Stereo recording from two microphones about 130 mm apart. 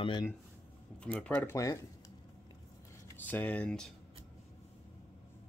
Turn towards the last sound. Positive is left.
turn(degrees=5)  # may be behind; listen again after turning